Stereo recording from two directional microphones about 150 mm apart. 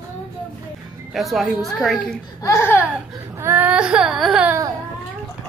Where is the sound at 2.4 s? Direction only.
20° left (ahead or behind).